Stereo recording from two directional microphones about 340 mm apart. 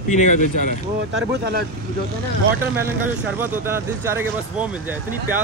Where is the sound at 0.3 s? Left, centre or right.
Left.